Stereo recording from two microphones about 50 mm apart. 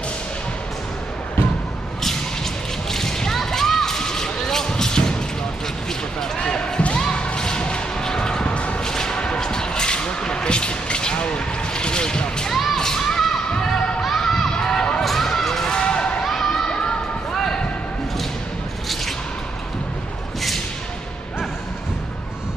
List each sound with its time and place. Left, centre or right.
2.0 s a sound: centre
5.9 s basketball bounce: centre
7.0 s music: centre
12.7 s children shouting: centre
13.6 s basketball bounce: centre
14.0 s a sound: centre
15.0 s crowd: centre
16.3 s children shouting: centre
17.3 s basketball bounce: centre
20.3 s a sound: centre